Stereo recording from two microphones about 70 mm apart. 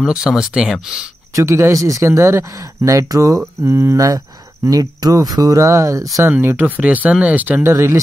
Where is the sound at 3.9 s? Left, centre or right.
Right.